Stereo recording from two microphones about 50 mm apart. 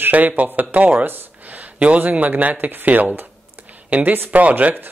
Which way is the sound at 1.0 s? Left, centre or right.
Right.